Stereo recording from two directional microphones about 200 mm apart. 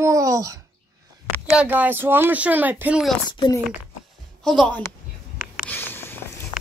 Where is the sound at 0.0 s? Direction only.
15° right (ahead or behind).